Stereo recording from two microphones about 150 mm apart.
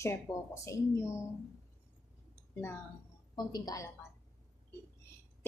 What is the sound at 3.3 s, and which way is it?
Speech, 25° left (ahead or behind).